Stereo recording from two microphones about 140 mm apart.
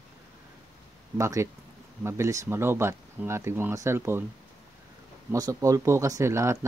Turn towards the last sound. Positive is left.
turn(degrees=-20)  # may be behind; listen again after turning